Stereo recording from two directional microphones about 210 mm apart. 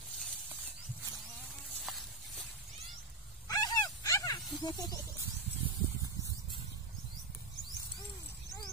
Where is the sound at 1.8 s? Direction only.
Centre (ahead or behind).